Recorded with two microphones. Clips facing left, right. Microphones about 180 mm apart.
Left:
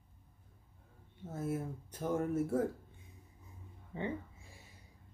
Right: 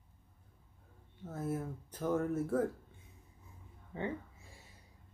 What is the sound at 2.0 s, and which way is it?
Speech, 25° left (ahead or behind).